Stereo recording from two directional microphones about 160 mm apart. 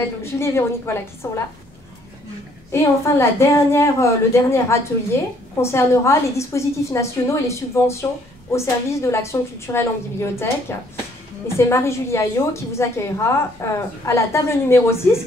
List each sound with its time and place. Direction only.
0.0 s a woman's voice: 15° left (ahead or behind)
2.7 s a woman's voice: 15° left (ahead or behind)